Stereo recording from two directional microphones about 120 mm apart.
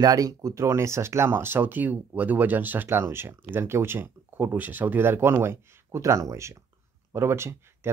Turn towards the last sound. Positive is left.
turn(degrees=-20)  # may be behind; listen again after turning